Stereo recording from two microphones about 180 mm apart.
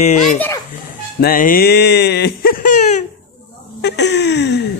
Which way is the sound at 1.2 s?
50° left (ahead or behind).